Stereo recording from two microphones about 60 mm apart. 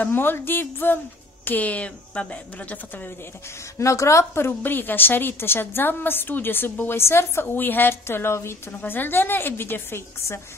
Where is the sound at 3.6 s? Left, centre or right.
Left.